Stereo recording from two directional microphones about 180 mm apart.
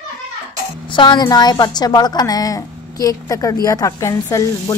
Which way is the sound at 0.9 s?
25° left (ahead or behind).